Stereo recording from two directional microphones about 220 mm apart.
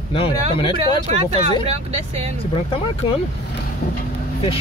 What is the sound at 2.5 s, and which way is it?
Speech, 25° left (ahead or behind).